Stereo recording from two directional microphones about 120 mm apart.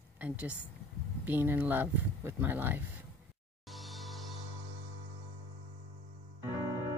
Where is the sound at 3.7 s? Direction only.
Centre (ahead or behind).